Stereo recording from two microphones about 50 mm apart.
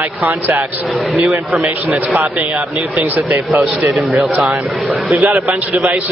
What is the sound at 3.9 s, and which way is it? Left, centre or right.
Speech, centre.